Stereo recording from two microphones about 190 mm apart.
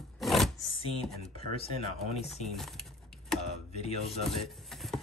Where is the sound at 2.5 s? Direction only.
Centre (ahead or behind).